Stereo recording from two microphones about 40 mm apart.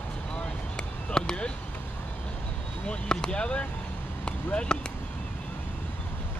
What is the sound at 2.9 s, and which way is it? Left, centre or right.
Speech, left.